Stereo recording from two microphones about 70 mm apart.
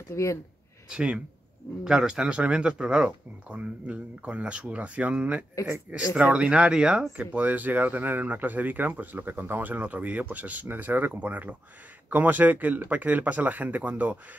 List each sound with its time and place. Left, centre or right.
0.1 s speech: left
0.8 s speech: centre